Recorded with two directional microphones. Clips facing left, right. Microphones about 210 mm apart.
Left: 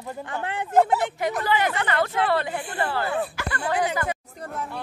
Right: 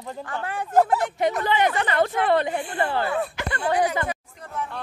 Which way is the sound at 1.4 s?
20° right (ahead or behind).